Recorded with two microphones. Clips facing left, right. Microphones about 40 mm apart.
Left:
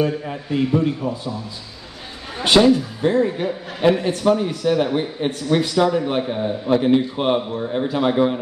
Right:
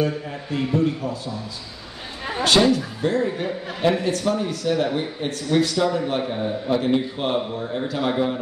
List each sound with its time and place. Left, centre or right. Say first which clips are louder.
0.0 s a man's voice: left 3 dB; centre
2.7 s a man's voice: left 4 dB; centre
6.2 s a man's voice: left 2 dB; centre
6.7 s a man's voice: left 5 dB; centre